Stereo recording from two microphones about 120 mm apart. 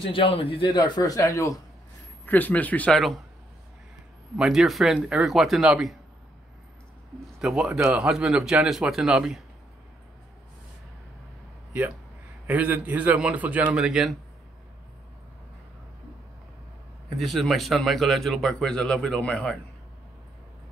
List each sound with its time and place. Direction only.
0.0 s a man's voice: 50° left (ahead or behind); by 1.6 s 30° left (ahead or behind)
2.2 s a man's voice: 15° left (ahead or behind)
4.4 s speech: 5° right (ahead or behind)
7.3 s speech: 5° right (ahead or behind)
12.4 s a man's voice: 15° right (ahead or behind)
17.2 s speech: centre (ahead or behind)